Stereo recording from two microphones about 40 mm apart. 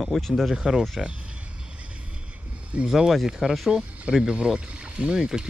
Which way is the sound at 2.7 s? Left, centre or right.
Right.